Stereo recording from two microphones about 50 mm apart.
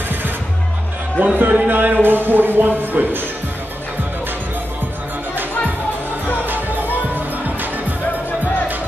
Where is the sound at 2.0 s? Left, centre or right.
Right.